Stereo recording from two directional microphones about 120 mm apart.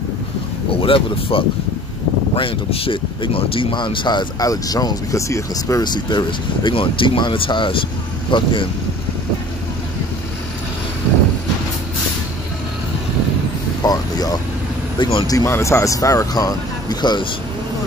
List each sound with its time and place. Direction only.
0.7 s speech: 50° left (ahead or behind)
13.8 s vehicle: 30° left (ahead or behind)
15.0 s speech: 40° left (ahead or behind)
15.3 s speech: 25° left (ahead or behind)